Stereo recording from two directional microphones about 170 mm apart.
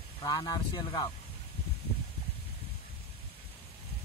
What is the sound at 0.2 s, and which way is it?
Speech, 20° left (ahead or behind).